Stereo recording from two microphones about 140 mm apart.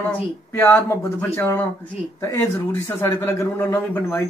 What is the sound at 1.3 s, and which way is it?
Speech, 15° left (ahead or behind).